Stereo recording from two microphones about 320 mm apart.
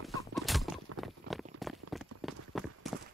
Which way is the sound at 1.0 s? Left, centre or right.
Centre.